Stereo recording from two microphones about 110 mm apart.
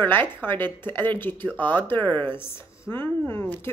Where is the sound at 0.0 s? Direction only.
20° left (ahead or behind).